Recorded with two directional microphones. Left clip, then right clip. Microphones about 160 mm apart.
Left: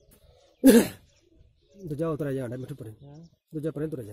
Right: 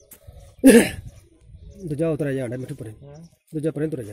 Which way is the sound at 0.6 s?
15° left (ahead or behind).